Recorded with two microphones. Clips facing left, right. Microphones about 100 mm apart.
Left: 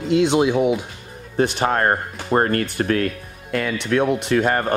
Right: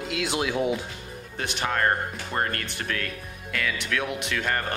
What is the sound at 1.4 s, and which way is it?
Speech, 35° left (ahead or behind).